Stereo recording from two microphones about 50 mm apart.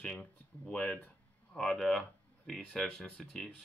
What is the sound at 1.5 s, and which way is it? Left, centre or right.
Speech, centre.